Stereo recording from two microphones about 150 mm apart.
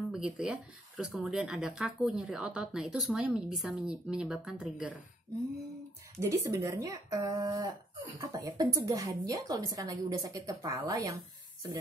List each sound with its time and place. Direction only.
0.1 s speech: 5° right (ahead or behind)
6.2 s speech: 20° right (ahead or behind)